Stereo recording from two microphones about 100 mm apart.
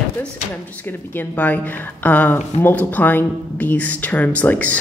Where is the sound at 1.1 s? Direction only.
15° left (ahead or behind).